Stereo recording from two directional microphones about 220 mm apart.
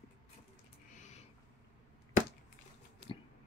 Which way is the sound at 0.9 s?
35° left (ahead or behind).